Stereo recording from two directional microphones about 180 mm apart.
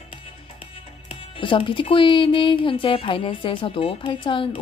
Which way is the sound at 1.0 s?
30° left (ahead or behind).